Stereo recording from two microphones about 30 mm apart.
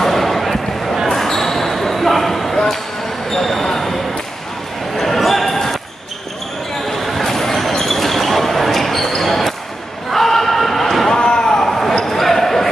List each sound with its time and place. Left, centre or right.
0.0 s basketball bounce: centre
4.9 s basketball bounce: centre
6.9 s basketball bounce: centre
10.1 s a sound: centre
11.1 s slam: left
12.0 s basketball bounce: centre